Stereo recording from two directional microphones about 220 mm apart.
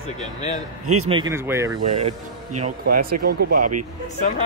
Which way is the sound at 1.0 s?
20° right (ahead or behind).